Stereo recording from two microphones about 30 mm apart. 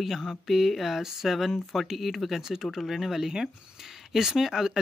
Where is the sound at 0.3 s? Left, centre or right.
Centre.